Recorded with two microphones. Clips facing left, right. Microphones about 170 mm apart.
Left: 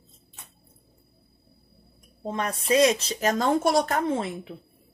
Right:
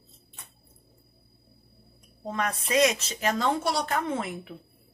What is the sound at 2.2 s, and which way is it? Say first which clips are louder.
A woman's voice: left 3 dB; 30° left (ahead or behind).